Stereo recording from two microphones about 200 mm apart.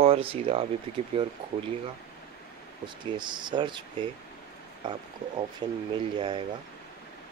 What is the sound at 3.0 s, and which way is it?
Speech, 20° right (ahead or behind).